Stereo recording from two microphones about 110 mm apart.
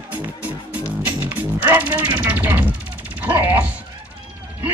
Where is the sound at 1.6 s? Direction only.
15° right (ahead or behind).